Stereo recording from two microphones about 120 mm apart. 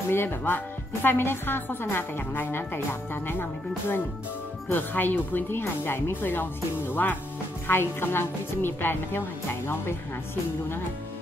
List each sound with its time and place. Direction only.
0.1 s speech: 20° left (ahead or behind)
4.6 s a woman's voice: 15° left (ahead or behind)